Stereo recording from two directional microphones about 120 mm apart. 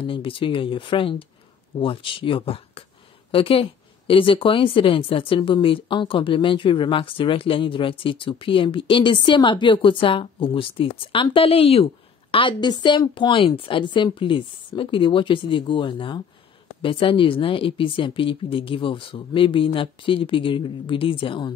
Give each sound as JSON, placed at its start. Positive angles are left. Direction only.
{"t": 0.0, "sound": "a woman's voice", "side_deg": 45}